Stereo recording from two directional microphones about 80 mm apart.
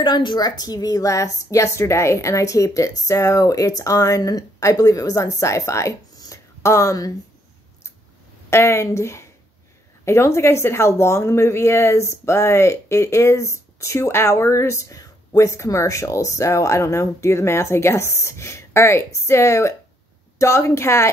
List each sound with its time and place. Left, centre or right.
0.0 s a woman's voice: left
6.1 s a sound: left
8.5 s speech: left